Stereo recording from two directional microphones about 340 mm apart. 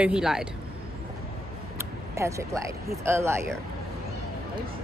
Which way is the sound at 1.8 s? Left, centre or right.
Centre.